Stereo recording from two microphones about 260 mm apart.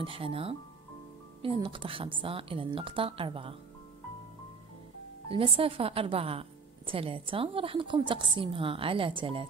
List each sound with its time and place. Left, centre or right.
0.0 s a woman's voice: right
5.3 s a woman's voice: right